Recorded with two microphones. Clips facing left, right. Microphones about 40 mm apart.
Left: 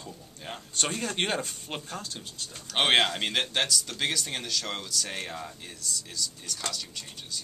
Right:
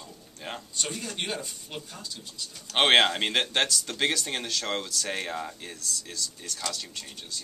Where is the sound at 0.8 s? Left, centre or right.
Left.